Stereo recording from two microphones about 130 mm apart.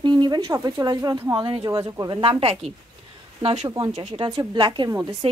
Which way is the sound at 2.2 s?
50° right (ahead or behind).